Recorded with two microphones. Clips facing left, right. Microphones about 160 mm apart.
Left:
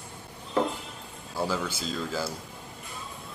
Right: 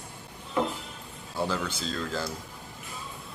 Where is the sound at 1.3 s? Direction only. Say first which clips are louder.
Even; 10° left (ahead or behind).